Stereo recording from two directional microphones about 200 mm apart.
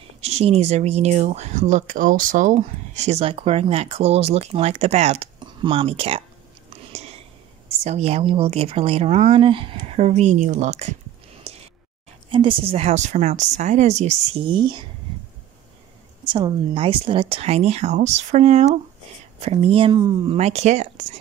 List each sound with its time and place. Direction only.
0.2 s speech: 30° right (ahead or behind)
6.9 s a sound: 35° right (ahead or behind)
7.8 s speech: 30° right (ahead or behind)
12.3 s speech: 25° right (ahead or behind)
16.3 s speech: 20° right (ahead or behind)